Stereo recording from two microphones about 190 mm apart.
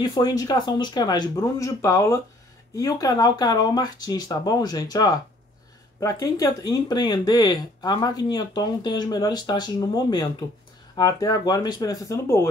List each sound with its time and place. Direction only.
0.0 s speech: 20° left (ahead or behind)